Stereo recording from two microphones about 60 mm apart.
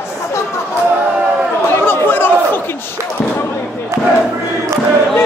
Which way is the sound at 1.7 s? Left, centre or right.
Left.